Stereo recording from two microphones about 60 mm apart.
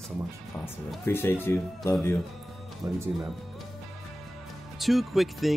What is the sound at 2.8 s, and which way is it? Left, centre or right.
Speech, right.